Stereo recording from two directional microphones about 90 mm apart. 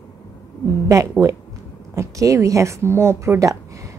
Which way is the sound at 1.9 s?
35° right (ahead or behind).